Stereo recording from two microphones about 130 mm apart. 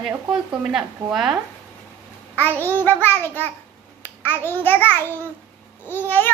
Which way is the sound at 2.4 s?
15° left (ahead or behind).